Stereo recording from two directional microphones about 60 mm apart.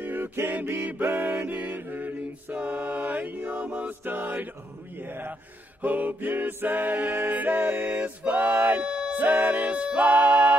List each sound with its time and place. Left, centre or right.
0.0 s a sound: right
0.7 s mantra: right
8.2 s music: right
8.8 s music: centre
9.1 s music: right